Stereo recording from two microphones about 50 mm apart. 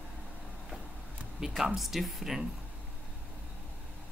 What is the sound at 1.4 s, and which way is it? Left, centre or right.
Speech, centre.